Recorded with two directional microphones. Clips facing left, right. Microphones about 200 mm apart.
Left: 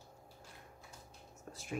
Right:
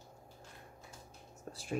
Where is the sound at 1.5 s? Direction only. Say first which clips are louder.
Right 4 dB; 35° right (ahead or behind).